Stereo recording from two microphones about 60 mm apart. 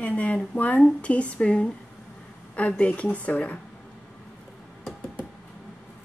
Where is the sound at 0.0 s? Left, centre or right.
Left.